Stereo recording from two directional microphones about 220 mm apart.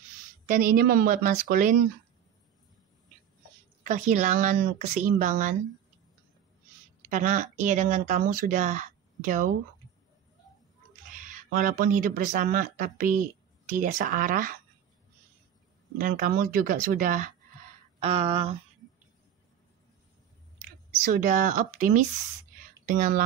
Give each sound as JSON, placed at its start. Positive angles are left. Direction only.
{"t": 0.5, "sound": "speech", "side_deg": -40}
{"t": 3.8, "sound": "speech", "side_deg": -35}
{"t": 7.1, "sound": "speech", "side_deg": -35}
{"t": 11.1, "sound": "speech", "side_deg": -35}
{"t": 16.0, "sound": "speech", "side_deg": -40}
{"t": 18.0, "sound": "speech", "side_deg": -25}
{"t": 21.0, "sound": "speech", "side_deg": -35}